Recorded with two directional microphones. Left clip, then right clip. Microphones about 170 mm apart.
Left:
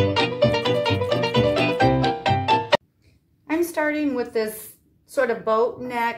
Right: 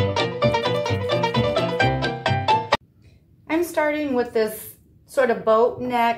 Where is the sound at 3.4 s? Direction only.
25° left (ahead or behind).